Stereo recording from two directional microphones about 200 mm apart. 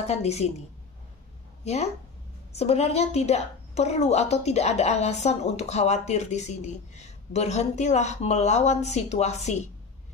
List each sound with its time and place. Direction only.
0.0 s a woman's voice: 30° left (ahead or behind)
1.6 s a woman's voice: 30° left (ahead or behind)